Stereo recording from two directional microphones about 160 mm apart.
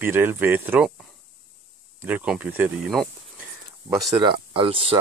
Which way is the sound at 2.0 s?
10° right (ahead or behind).